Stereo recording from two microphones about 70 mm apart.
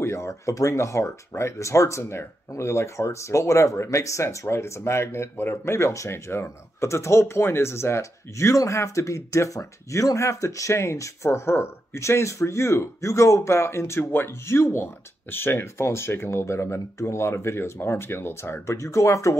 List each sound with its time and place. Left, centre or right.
0.0 s speech: left